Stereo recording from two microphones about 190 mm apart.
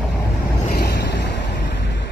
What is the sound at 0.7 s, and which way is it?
Vehicle, 55° left (ahead or behind).